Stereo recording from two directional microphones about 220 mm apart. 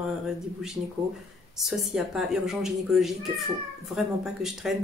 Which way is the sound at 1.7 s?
Centre (ahead or behind).